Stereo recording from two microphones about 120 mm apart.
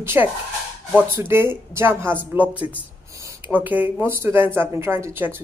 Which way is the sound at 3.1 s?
25° right (ahead or behind).